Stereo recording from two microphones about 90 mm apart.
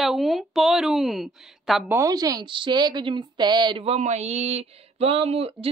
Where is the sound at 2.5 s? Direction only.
60° right (ahead or behind).